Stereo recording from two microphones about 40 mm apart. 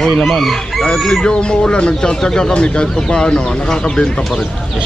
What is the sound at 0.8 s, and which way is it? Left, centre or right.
Speech, centre.